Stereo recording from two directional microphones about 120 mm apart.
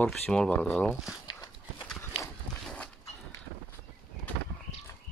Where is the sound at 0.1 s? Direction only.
5° left (ahead or behind).